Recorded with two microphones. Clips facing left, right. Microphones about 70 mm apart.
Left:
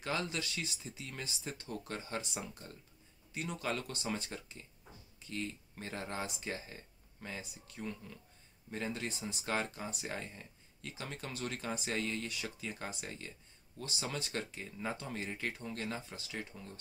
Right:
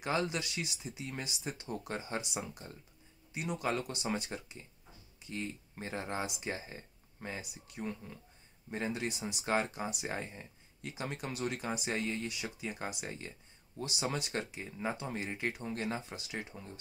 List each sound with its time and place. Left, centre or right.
0.0 s speech: centre
3.6 s speech: right